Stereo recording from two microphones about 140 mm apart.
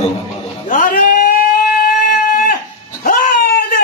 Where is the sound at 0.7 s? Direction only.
70° left (ahead or behind); by 2.5 s 90° left.